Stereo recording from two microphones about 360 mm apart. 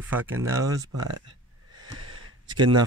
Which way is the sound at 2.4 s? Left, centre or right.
Centre.